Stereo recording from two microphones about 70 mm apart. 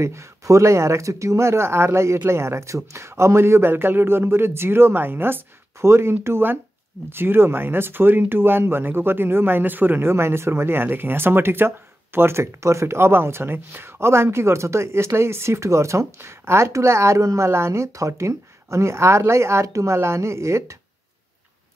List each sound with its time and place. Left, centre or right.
0.0 s speech: right